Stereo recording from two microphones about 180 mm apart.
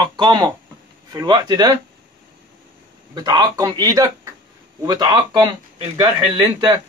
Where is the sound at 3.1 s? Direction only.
25° right (ahead or behind).